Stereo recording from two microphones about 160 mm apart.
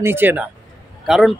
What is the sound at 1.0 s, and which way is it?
Speech, centre (ahead or behind).